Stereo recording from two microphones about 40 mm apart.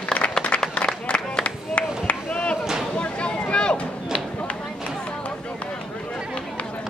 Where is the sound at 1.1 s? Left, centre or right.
Left.